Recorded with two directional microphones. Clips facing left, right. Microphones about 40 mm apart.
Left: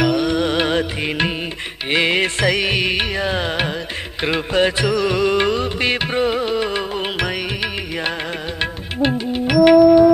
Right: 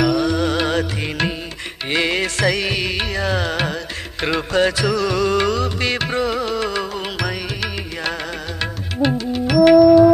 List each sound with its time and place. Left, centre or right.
0.0 s music: left